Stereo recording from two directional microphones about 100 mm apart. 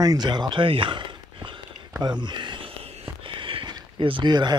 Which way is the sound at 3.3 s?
60° right (ahead or behind).